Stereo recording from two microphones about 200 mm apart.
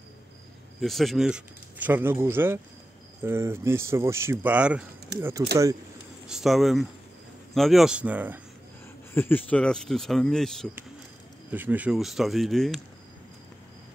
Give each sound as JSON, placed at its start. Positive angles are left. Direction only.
{"t": 0.7, "sound": "speech", "side_deg": 0}
{"t": 5.1, "sound": "speech", "side_deg": -55}
{"t": 6.2, "sound": "speech", "side_deg": 0}
{"t": 9.1, "sound": "speech", "side_deg": 10}
{"t": 11.5, "sound": "speech", "side_deg": -10}